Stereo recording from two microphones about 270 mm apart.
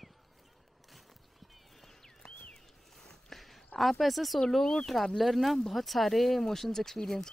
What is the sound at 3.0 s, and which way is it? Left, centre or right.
Speech, centre.